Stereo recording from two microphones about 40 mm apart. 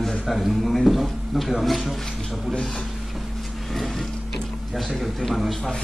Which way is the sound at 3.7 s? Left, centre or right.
Centre.